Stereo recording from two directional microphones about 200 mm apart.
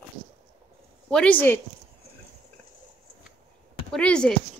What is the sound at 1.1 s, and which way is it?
Speech, 5° left (ahead or behind).